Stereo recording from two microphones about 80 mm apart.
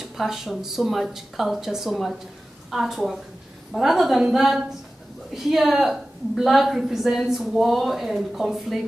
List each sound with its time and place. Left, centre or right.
0.0 s a woman's voice: centre